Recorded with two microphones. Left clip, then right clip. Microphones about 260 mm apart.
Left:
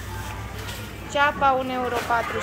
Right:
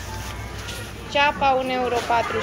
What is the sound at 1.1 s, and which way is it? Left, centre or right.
Speech, centre.